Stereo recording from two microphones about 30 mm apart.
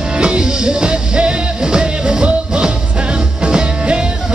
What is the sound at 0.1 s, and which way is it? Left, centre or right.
Music, right.